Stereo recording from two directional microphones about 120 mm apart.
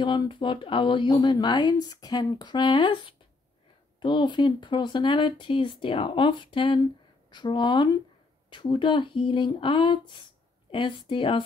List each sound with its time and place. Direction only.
0.0 s speech: 40° left (ahead or behind)